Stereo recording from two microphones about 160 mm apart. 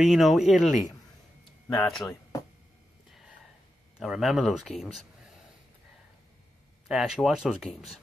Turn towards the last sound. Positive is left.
turn(degrees=0)  # may be behind; listen again after turning